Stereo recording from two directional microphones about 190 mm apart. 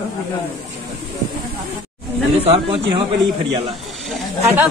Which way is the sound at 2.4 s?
30° right (ahead or behind).